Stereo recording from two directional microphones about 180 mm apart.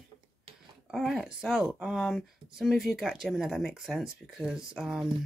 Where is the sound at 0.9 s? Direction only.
Centre (ahead or behind).